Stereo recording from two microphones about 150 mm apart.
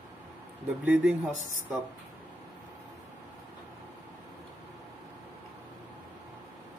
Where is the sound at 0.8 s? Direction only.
10° right (ahead or behind).